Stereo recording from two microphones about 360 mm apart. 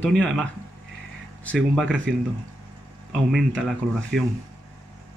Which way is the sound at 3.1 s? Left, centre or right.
Centre.